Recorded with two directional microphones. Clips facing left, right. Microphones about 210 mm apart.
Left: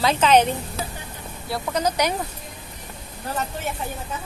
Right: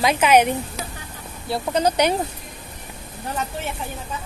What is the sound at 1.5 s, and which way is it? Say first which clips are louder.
Speech: right 3 dB; 30° right (ahead or behind).